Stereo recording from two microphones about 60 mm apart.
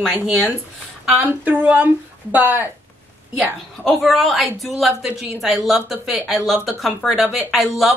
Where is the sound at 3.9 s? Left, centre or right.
Centre.